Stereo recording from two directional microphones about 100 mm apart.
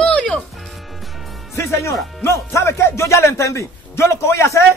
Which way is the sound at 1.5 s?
25° left (ahead or behind).